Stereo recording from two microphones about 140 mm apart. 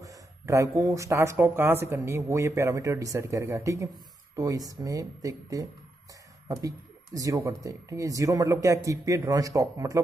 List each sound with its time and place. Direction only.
0.0 s speech: 20° right (ahead or behind)
7.2 s speech: 25° right (ahead or behind)